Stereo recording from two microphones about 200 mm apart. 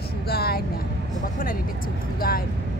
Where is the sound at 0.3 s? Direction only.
50° left (ahead or behind).